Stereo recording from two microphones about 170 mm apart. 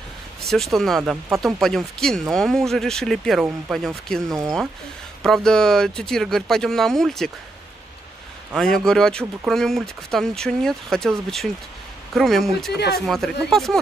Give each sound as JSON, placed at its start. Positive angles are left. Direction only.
{"t": 0.5, "sound": "speech", "side_deg": 0}
{"t": 4.3, "sound": "speech", "side_deg": -20}
{"t": 5.2, "sound": "speech", "side_deg": 5}
{"t": 8.5, "sound": "speech", "side_deg": 5}